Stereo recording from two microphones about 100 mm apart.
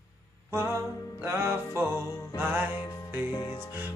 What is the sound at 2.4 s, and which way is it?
Music, 20° right (ahead or behind).